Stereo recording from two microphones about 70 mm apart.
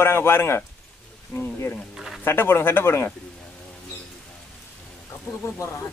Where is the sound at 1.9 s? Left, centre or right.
Centre.